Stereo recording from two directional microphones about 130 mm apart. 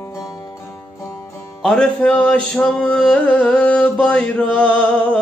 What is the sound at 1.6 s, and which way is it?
Speech, 10° left (ahead or behind).